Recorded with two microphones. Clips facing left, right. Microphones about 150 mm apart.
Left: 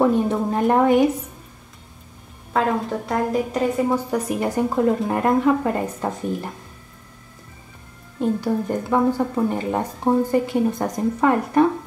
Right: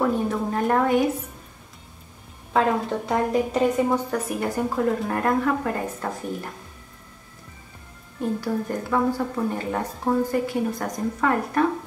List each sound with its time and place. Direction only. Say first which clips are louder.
0.0 s a woman's voice: left 5 dB; 20° left (ahead or behind)
2.5 s a woman's voice: even; centre (ahead or behind)
4.1 s a woman's voice: left 3 dB; 20° left (ahead or behind)
8.2 s a woman's voice: left 4 dB; 20° left (ahead or behind)